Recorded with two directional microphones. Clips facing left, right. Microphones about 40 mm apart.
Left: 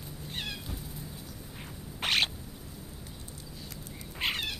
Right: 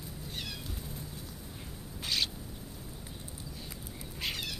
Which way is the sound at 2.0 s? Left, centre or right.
Left.